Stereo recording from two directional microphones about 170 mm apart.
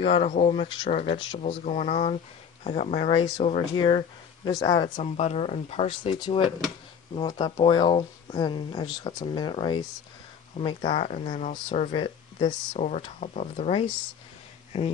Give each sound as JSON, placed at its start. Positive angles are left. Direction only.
{"t": 0.0, "sound": "speech", "side_deg": 35}
{"t": 1.6, "sound": "speech", "side_deg": 40}
{"t": 3.7, "sound": "speech", "side_deg": 30}
{"t": 5.1, "sound": "speech", "side_deg": 40}
{"t": 11.3, "sound": "speech", "side_deg": 45}
{"t": 11.9, "sound": "speech", "side_deg": 30}
{"t": 12.8, "sound": "speech", "side_deg": 45}